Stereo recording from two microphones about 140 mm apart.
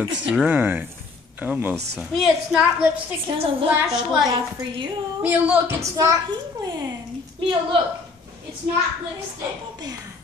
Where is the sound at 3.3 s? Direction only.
40° right (ahead or behind).